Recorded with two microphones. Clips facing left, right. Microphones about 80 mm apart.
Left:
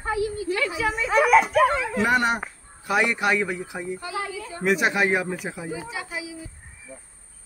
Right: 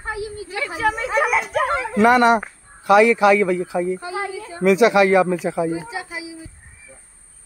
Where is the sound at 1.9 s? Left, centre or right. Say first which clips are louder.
Right 11 dB; right.